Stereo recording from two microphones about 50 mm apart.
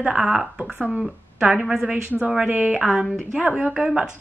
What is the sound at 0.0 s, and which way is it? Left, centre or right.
A woman's voice, centre.